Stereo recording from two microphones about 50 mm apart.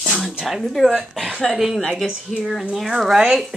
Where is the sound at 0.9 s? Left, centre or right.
Centre.